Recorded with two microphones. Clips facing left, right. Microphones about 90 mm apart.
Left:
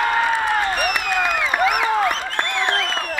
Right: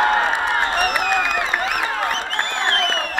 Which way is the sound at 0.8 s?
30° right (ahead or behind).